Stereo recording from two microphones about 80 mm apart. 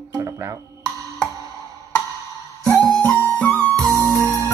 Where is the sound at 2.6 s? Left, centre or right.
Right.